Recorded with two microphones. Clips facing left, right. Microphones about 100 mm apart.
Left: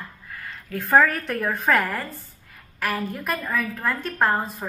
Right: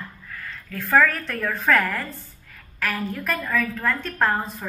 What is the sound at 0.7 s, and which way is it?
A woman's voice, 20° left (ahead or behind).